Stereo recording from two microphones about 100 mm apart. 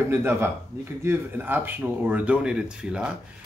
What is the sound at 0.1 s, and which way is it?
A man's voice, 25° right (ahead or behind).